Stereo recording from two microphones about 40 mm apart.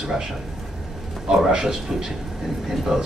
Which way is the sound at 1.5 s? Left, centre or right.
Centre.